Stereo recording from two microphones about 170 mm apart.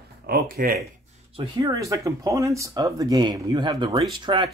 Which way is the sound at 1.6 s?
20° right (ahead or behind).